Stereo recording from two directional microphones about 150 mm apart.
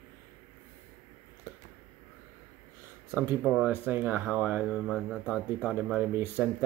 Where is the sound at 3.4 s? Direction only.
5° right (ahead or behind).